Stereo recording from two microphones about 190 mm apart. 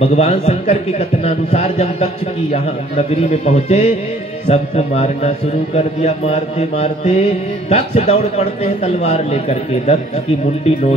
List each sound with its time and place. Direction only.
0.0 s a man's voice: 35° left (ahead or behind)